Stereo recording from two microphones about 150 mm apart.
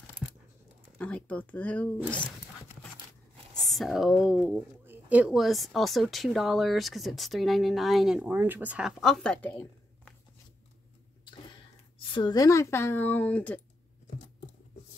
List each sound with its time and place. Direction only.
0.9 s speech: 10° left (ahead or behind)
3.6 s speech: centre (ahead or behind)
12.1 s speech: 30° left (ahead or behind); by 13.6 s 10° left (ahead or behind)